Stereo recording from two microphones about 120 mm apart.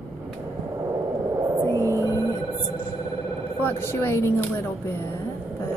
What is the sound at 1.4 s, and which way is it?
Music, 30° right (ahead or behind).